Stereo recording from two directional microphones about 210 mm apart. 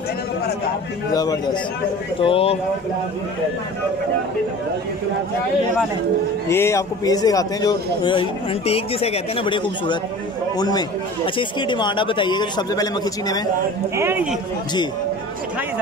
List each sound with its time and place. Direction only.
1.1 s a man's voice: 20° left (ahead or behind)
6.5 s a man's voice: 15° left (ahead or behind)
13.9 s speech: 10° right (ahead or behind)